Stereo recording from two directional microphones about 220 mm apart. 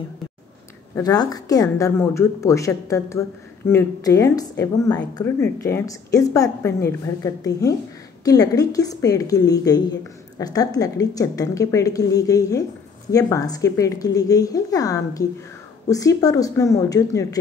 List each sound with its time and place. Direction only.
0.9 s a woman's voice: 15° left (ahead or behind)